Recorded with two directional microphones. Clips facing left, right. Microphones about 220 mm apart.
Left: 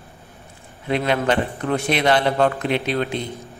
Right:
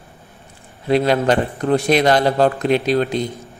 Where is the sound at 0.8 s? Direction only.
35° right (ahead or behind).